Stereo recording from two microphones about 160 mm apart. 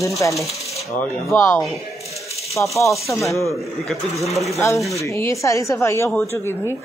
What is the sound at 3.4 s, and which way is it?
Speech, centre (ahead or behind).